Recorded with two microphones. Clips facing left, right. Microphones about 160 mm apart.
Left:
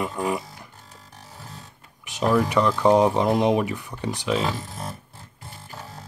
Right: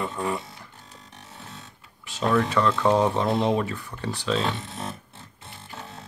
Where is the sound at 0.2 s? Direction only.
15° left (ahead or behind).